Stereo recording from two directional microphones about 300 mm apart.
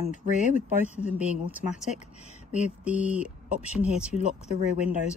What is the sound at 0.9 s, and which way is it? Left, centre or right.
Speech, centre.